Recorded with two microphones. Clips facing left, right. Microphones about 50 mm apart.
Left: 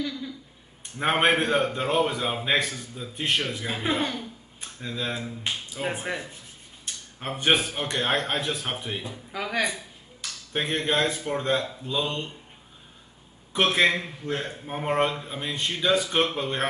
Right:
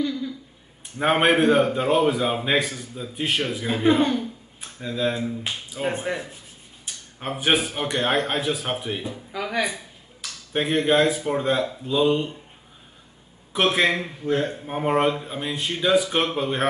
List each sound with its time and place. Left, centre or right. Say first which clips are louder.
0.0 s a sound: right 6 dB; centre
0.9 s a man's voice: right 3 dB; centre
13.5 s a man's voice: right 1 dB; centre